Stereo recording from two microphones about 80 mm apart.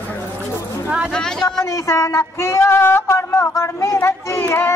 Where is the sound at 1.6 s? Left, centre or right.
Left.